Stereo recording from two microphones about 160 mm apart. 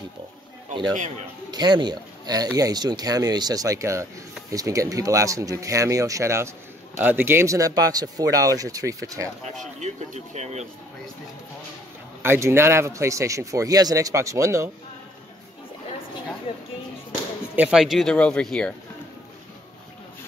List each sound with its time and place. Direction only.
1.5 s speech: 25° right (ahead or behind)
9.6 s speech: 45° right (ahead or behind)
12.2 s speech: 15° right (ahead or behind)
17.6 s speech: 5° right (ahead or behind)